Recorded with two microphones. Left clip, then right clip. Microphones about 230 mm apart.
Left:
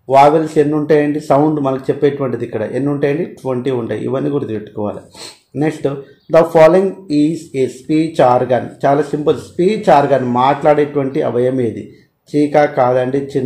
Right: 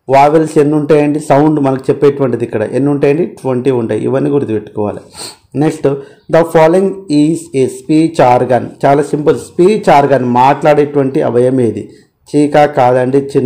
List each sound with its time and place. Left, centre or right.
0.1 s speech: right